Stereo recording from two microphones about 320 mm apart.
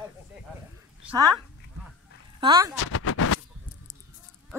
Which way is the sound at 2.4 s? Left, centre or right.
Centre.